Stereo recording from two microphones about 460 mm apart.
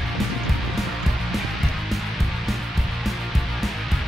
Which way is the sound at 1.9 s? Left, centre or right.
Centre.